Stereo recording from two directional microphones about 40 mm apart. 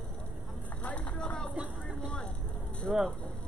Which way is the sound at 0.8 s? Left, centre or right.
Left.